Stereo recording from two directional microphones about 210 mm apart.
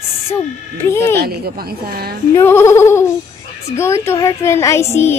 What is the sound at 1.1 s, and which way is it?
A woman's voice, 45° right (ahead or behind).